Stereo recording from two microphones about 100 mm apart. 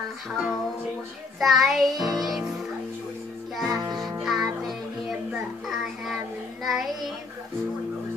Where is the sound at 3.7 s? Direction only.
40° right (ahead or behind).